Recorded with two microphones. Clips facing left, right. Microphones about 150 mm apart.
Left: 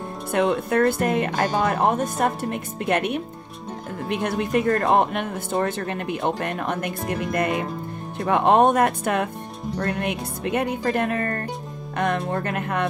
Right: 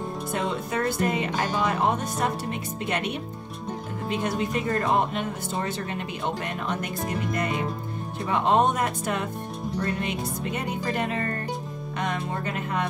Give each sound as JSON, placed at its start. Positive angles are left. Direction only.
{"t": 0.3, "sound": "speech", "side_deg": 60}